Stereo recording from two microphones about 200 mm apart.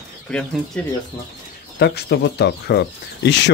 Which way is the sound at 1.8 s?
55° left (ahead or behind).